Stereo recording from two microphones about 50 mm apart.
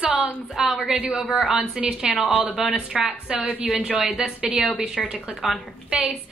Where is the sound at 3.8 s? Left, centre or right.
Centre.